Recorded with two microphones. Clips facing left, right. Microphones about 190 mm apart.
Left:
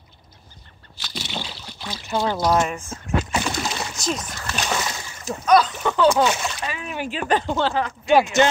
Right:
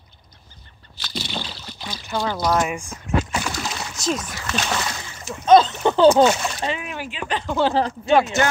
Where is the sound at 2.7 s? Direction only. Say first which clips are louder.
Right 1 dB; 15° right (ahead or behind).